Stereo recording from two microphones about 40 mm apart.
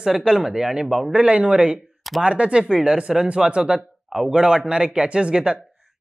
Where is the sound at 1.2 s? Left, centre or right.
Right.